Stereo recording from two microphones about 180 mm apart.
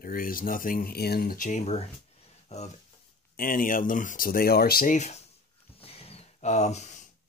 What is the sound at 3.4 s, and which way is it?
Speech, 50° left (ahead or behind).